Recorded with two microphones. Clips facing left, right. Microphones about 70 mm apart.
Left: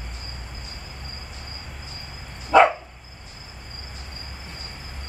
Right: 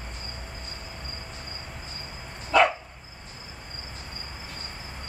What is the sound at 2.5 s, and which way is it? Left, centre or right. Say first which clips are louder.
Dog: left 5 dB; left.